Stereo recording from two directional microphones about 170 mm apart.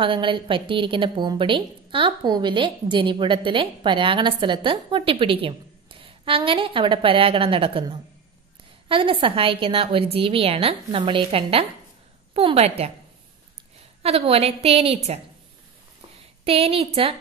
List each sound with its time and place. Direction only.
0.0 s a woman's voice: 30° right (ahead or behind)
14.0 s a woman's voice: 35° right (ahead or behind)
16.4 s a woman's voice: 35° right (ahead or behind)